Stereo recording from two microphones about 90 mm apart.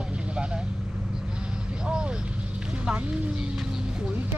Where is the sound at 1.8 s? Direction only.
10° right (ahead or behind).